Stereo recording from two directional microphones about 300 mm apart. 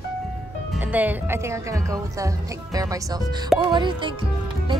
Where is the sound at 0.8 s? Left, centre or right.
Centre.